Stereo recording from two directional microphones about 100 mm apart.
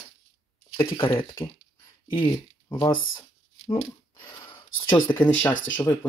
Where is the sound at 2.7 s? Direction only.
50° left (ahead or behind).